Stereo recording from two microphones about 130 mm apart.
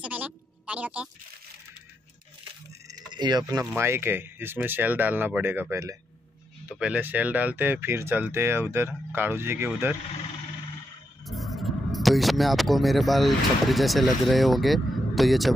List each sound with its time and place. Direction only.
0.0 s a sound: 10° right (ahead or behind)
2.9 s speech: 35° right (ahead or behind)
6.7 s speech: 10° right (ahead or behind)
11.2 s speech: centre (ahead or behind)